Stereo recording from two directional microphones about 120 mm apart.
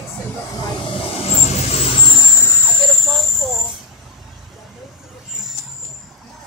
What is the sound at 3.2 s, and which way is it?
Cricket, centre (ahead or behind).